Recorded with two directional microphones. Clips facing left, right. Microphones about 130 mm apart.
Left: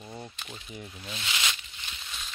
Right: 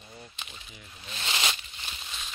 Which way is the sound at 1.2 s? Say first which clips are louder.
Right 3 dB; 40° right (ahead or behind).